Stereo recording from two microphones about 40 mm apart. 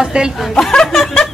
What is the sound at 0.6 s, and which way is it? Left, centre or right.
Speech, centre.